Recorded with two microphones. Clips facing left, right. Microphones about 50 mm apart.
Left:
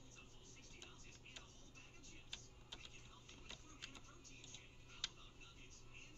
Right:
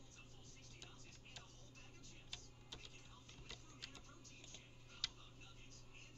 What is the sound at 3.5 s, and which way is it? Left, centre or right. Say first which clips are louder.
Printer: even; centre.